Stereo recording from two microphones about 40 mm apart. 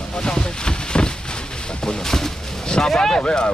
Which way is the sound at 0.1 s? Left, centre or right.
Centre.